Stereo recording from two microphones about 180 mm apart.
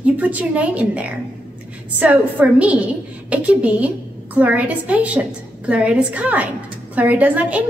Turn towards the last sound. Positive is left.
turn(degrees=-5)  # may be behind; listen again after turning